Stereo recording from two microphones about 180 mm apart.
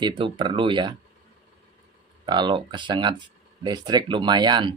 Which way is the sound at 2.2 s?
25° right (ahead or behind).